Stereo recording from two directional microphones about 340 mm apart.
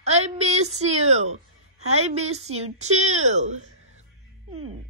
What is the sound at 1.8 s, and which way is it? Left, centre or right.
A woman's voice, centre.